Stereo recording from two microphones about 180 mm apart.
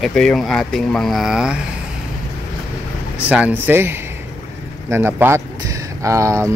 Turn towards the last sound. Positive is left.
turn(degrees=-15)  # may be behind; listen again after turning